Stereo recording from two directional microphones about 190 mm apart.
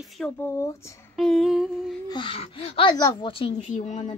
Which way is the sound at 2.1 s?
30° left (ahead or behind).